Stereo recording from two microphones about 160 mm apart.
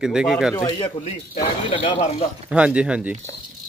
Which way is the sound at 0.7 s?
30° left (ahead or behind).